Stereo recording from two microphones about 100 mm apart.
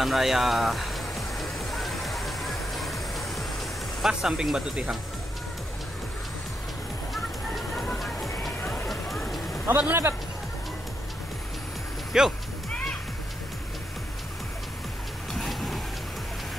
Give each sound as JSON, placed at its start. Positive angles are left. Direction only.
{"t": 0.0, "sound": "music", "side_deg": 0}
{"t": 4.0, "sound": "speech", "side_deg": -5}
{"t": 9.7, "sound": "speech", "side_deg": -15}
{"t": 12.1, "sound": "speech", "side_deg": -5}
{"t": 15.3, "sound": "a sound", "side_deg": 0}